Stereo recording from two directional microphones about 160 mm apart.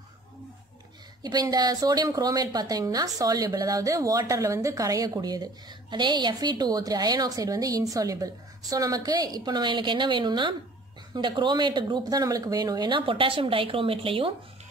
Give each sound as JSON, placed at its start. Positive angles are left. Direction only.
{"t": 1.2, "sound": "a woman's voice", "side_deg": -25}